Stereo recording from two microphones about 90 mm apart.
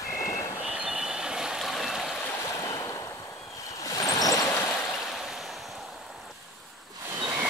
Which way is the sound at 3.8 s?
40° left (ahead or behind).